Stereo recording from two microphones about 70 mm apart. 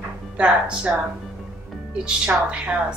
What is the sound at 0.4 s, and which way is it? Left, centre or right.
Speech, centre.